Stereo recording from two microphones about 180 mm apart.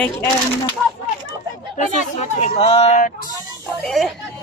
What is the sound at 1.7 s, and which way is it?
Speech, 40° left (ahead or behind).